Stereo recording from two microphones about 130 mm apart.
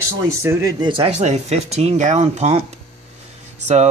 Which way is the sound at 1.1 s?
60° right (ahead or behind).